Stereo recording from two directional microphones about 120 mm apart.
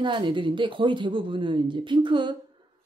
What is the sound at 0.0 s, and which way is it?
Speech, 45° right (ahead or behind).